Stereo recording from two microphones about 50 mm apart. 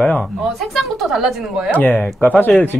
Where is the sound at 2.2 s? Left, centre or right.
Left.